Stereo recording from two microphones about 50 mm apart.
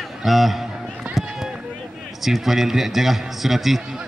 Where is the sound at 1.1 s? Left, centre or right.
Right.